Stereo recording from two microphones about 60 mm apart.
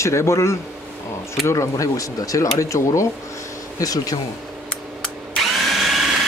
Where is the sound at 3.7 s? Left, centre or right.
Left.